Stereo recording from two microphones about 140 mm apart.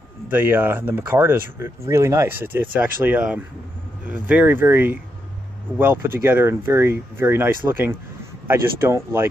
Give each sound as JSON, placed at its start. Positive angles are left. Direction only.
{"t": 0.3, "sound": "speech", "side_deg": -15}